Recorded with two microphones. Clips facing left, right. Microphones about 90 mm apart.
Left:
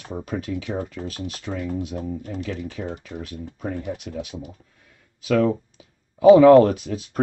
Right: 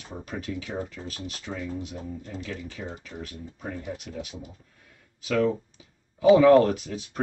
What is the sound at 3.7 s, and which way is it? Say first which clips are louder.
Speech: left 4 dB; 60° left (ahead or behind).